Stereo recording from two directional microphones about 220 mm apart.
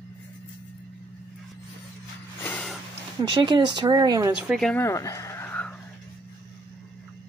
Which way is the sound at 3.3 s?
20° right (ahead or behind).